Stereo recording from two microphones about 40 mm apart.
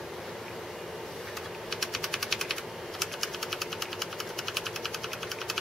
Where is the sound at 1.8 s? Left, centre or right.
Centre.